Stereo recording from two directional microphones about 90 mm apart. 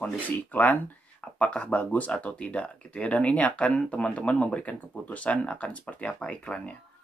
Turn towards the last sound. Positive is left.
turn(degrees=10)  # may be behind; listen again after turning